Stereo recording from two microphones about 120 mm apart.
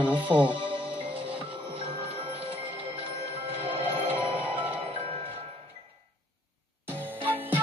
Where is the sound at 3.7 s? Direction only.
55° right (ahead or behind).